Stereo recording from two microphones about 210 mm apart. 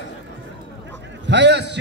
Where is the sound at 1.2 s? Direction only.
55° right (ahead or behind).